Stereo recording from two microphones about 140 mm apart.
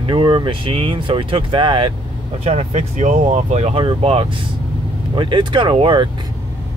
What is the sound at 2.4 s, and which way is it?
Speech, 50° right (ahead or behind).